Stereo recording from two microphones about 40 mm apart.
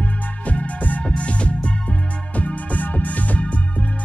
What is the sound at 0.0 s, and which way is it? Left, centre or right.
Music, left.